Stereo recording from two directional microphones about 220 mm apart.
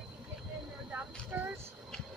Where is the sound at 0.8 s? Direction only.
10° right (ahead or behind).